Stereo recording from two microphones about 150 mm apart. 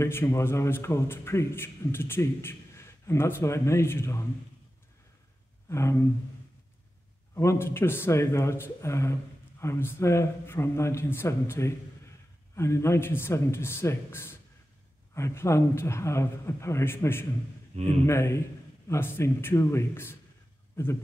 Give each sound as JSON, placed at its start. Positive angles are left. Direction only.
{"t": 0.0, "sound": "a man's voice", "side_deg": 20}
{"t": 5.7, "sound": "a man's voice", "side_deg": 20}
{"t": 7.3, "sound": "a man's voice", "side_deg": 15}
{"t": 17.7, "sound": "speech", "side_deg": -45}
{"t": 18.0, "sound": "a man's voice", "side_deg": 20}